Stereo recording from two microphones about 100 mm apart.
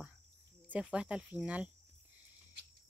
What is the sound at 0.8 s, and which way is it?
Speech, 10° right (ahead or behind).